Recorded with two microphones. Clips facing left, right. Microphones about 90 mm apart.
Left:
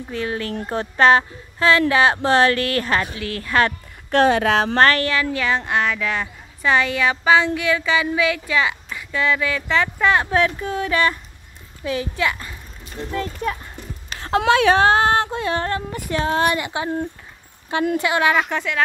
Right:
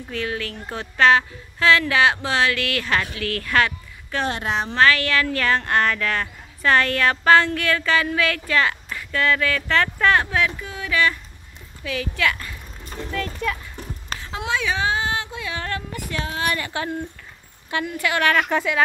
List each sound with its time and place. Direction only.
0.1 s a woman's voice: 30° left (ahead or behind)
2.2 s a woman's voice: 45° left (ahead or behind)
3.0 s speech: 25° left (ahead or behind)
4.1 s speech: 80° left
4.7 s speech: 45° left (ahead or behind)
5.2 s speech: 15° left (ahead or behind)
10.3 s a woman's voice: 35° left (ahead or behind)
14.2 s speech: 65° left (ahead or behind); by 16.3 s 35° left (ahead or behind)
16.4 s speech: 20° left (ahead or behind)
17.9 s speech: 20° left (ahead or behind)
18.5 s speech: centre (ahead or behind)